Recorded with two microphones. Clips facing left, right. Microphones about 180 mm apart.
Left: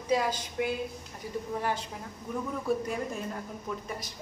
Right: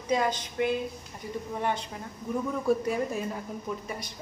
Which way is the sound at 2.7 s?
Centre (ahead or behind).